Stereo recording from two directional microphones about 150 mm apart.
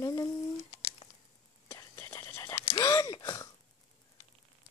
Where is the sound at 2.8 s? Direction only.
25° left (ahead or behind).